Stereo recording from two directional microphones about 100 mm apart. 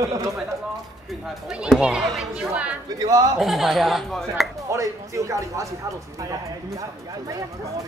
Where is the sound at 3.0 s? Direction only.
40° right (ahead or behind).